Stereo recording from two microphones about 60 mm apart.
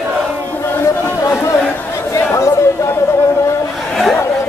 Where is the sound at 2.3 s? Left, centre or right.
Left.